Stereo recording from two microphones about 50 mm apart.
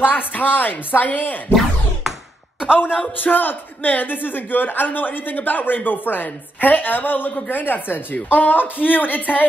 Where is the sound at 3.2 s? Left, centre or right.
Left.